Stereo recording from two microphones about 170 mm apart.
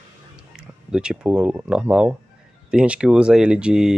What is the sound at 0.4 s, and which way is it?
Speech, 5° right (ahead or behind).